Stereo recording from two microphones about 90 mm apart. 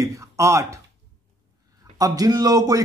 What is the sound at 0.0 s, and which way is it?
Speech, 35° right (ahead or behind).